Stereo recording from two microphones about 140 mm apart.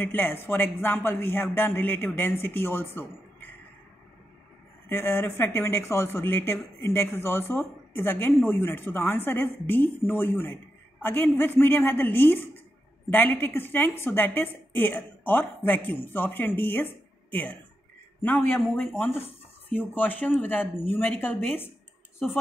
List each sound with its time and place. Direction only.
0.0 s speech: 15° left (ahead or behind)
4.8 s speech: 15° left (ahead or behind)